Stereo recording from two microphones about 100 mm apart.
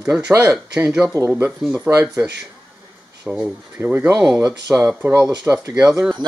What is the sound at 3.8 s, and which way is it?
Speech, 25° right (ahead or behind).